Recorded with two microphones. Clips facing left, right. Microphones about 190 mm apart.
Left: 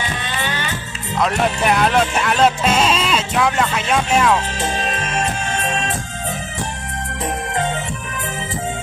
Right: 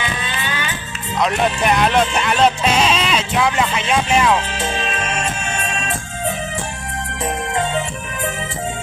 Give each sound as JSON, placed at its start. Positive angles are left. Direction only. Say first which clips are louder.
{"t": 1.2, "sound": "speech", "louder": "even", "side_deg": 0}